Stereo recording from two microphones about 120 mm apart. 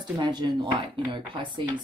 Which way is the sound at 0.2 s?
40° right (ahead or behind).